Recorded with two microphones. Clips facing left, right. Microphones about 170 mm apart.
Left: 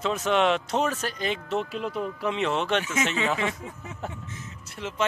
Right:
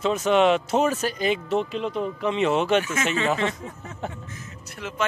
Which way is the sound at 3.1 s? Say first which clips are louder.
Right 6 dB; 5° left (ahead or behind).